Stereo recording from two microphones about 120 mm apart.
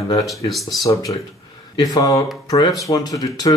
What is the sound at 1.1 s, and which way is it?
Speech, 40° left (ahead or behind).